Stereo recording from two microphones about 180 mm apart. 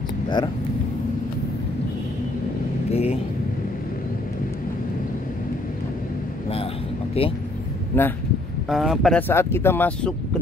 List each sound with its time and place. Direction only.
2.9 s speech: 35° left (ahead or behind)
7.2 s speech: 35° left (ahead or behind)
7.9 s speech: 10° left (ahead or behind)
8.6 s speech: centre (ahead or behind)
9.3 s speech: 15° left (ahead or behind)